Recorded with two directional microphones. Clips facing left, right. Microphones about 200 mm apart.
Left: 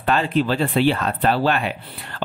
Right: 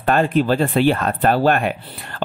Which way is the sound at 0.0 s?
50° right (ahead or behind).